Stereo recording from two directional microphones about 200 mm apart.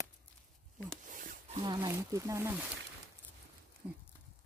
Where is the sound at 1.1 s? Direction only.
40° right (ahead or behind).